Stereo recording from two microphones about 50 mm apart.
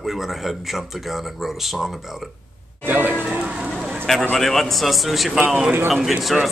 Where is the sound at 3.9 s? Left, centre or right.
Centre.